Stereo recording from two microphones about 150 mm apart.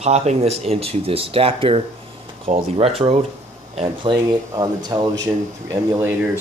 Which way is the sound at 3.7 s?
35° right (ahead or behind).